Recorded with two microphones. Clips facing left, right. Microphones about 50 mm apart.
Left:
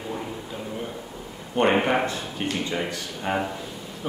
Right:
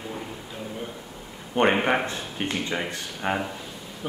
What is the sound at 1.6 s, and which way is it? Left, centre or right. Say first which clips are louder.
A man's voice: left 1 dB; right.